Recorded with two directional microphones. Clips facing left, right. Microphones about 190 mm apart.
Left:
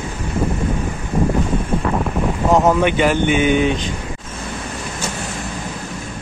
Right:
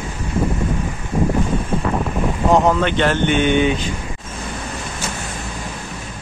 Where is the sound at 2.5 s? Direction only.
Centre (ahead or behind).